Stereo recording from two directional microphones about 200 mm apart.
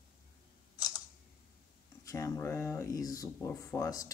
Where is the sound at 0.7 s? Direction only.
20° left (ahead or behind).